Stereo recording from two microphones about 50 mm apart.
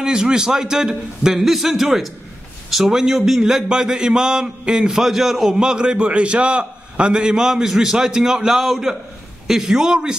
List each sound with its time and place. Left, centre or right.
0.0 s a man's voice: centre
5.6 s a man's voice: centre